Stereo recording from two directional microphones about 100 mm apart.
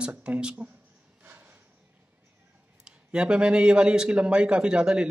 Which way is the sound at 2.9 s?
10° right (ahead or behind).